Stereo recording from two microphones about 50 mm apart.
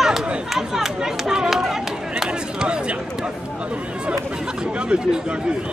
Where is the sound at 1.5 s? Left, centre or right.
Centre.